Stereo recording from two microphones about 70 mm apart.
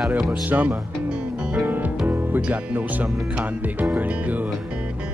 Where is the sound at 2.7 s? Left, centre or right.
Right.